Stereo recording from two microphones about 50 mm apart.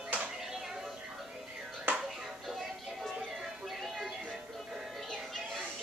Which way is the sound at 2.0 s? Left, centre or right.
Centre.